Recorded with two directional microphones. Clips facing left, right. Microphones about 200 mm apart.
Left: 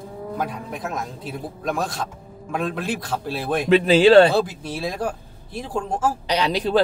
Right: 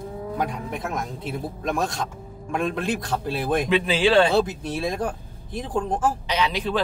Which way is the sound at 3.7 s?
40° left (ahead or behind).